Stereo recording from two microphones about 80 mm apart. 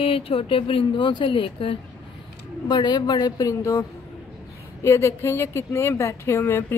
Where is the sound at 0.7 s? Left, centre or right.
Left.